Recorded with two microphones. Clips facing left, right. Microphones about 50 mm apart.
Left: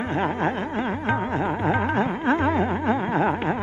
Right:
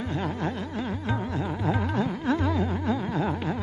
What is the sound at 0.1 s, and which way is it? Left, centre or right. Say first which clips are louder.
Music: left 7 dB; left.